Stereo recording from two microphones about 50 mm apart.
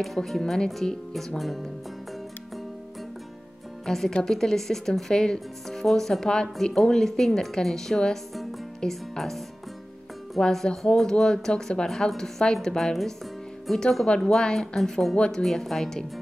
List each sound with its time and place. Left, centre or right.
0.0 s speech: centre
3.8 s speech: centre
10.4 s speech: centre
15.1 s speech: left
15.4 s speech: centre